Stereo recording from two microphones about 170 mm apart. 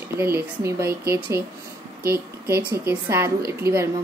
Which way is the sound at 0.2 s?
15° right (ahead or behind).